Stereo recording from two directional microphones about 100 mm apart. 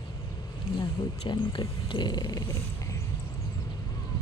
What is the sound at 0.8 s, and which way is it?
Speech, 55° left (ahead or behind).